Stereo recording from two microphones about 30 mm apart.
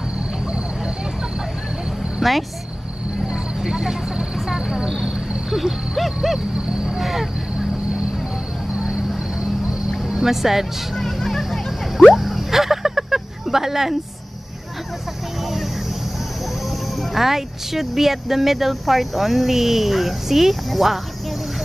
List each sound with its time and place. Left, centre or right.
2.2 s speech: centre
3.6 s vehicle: centre
4.6 s cricket: right
5.5 s owl: centre
5.9 s dog: centre
7.0 s vehicle: centre
8.7 s vehicle: right
10.0 s speech: centre
11.0 s music: centre
12.1 s a sound: centre
17.0 s speech: centre